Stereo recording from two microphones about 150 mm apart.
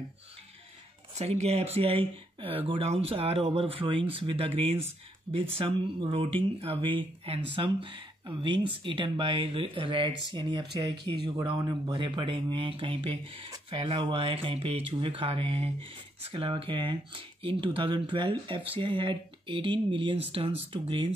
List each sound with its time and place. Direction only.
1.1 s speech: 45° right (ahead or behind)